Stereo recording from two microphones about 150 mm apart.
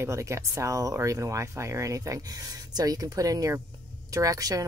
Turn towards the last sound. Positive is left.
turn(degrees=-25)  # may be behind; listen again after turning